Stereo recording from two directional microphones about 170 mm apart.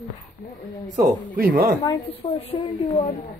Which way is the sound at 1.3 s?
55° right (ahead or behind).